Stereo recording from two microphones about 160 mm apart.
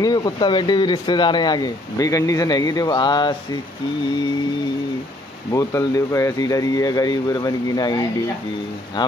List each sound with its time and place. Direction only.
0.0 s speech: 25° left (ahead or behind)
5.5 s speech: 20° left (ahead or behind)